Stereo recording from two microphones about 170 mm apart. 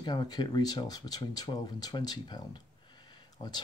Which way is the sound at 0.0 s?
25° left (ahead or behind).